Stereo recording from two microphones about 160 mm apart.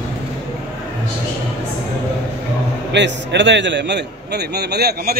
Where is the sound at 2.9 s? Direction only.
90° right.